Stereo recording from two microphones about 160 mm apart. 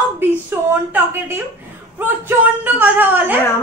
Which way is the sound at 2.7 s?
10° right (ahead or behind).